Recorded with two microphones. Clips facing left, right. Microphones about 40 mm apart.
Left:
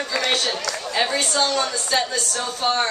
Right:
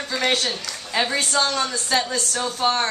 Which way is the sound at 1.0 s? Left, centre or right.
Centre.